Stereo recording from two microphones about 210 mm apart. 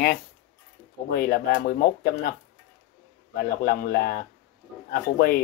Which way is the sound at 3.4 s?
50° left (ahead or behind).